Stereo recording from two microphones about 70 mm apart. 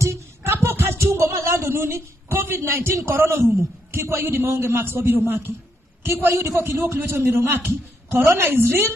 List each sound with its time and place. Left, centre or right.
0.0 s a man's voice: right